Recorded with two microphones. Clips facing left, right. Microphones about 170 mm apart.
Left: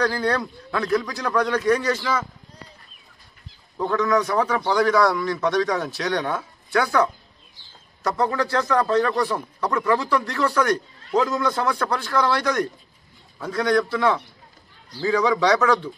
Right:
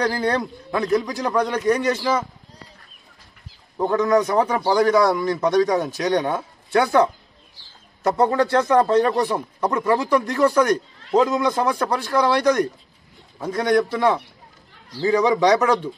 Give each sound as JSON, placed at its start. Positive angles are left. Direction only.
{"t": 0.0, "sound": "a man's voice", "side_deg": -20}
{"t": 3.7, "sound": "a man's voice", "side_deg": -20}
{"t": 4.4, "sound": "a man's voice", "side_deg": -30}